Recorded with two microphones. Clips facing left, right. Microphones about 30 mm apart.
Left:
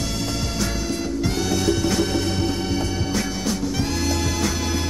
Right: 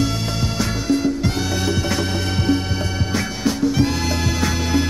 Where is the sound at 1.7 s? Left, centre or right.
Centre.